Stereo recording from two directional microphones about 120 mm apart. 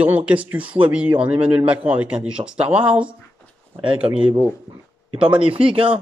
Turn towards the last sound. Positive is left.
turn(degrees=-45)  # may be behind; listen again after turning